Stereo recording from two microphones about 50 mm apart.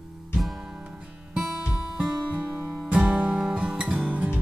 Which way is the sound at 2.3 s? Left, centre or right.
Right.